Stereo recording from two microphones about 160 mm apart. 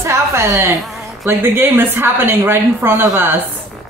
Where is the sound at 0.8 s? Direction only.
Centre (ahead or behind).